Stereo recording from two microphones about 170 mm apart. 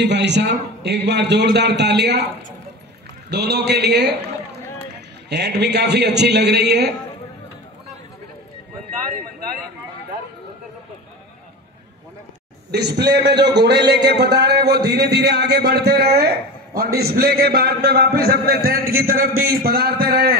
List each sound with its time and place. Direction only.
0.0 s a man's voice: 90° right
3.3 s a man's voice: 75° right (ahead or behind)
5.3 s a man's voice: 80° right
12.7 s a man's voice: 75° right (ahead or behind)